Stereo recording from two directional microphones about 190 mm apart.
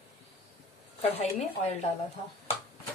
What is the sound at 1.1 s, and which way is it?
Speech, 30° left (ahead or behind).